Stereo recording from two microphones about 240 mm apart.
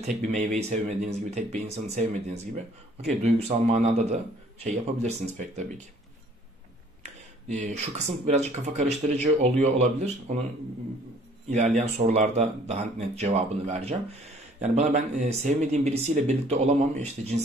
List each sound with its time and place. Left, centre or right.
0.0 s speech: right
7.0 s a sound: right
8.3 s speech: right
11.5 s speech: right